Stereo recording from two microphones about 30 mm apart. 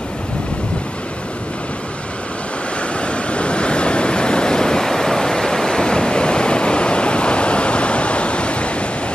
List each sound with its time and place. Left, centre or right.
3.0 s waves: left